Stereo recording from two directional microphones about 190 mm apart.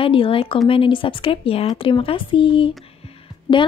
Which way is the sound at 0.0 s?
30° left (ahead or behind).